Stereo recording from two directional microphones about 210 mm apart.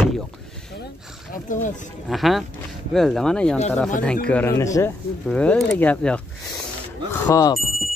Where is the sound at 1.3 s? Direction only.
40° left (ahead or behind).